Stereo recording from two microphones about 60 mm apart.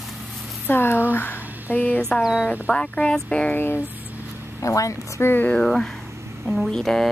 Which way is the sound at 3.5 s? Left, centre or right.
Left.